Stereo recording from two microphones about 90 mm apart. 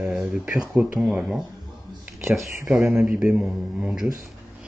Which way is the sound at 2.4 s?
30° right (ahead or behind).